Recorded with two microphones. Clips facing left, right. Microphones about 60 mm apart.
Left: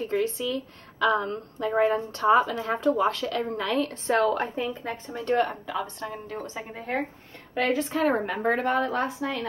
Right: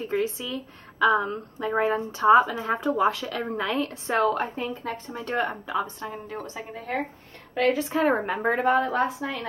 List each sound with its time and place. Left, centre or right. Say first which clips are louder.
0.0 s a woman's voice: left 1 dB; centre